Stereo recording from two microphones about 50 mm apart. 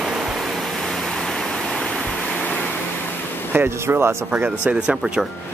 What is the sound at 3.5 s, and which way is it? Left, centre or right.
Speech, right.